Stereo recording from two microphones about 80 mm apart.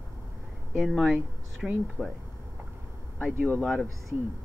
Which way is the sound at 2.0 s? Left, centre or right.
Centre.